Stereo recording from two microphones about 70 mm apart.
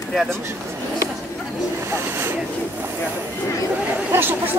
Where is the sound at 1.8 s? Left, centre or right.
Right.